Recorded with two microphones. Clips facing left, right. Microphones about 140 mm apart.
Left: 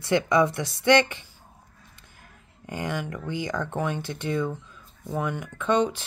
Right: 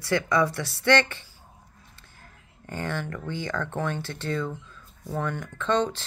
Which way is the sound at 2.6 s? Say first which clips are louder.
Left 1 dB; 15° left (ahead or behind).